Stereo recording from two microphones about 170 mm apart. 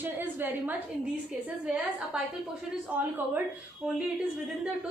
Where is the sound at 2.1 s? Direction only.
5° right (ahead or behind).